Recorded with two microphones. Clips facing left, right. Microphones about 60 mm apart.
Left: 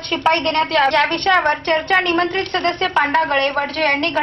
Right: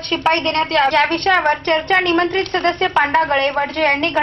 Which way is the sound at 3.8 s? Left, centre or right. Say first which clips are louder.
Right 1 dB; centre.